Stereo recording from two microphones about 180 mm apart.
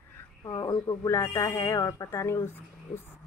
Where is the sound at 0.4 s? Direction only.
20° left (ahead or behind).